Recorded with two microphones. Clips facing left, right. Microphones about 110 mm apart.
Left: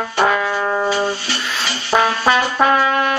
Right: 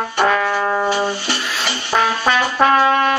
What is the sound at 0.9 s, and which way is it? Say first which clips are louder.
Music: even; 15° right (ahead or behind).